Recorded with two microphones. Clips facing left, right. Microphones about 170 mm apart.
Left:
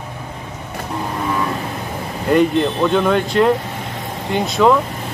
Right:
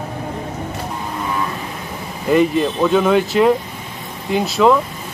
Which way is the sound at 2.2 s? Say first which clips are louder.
Even; 5° right (ahead or behind).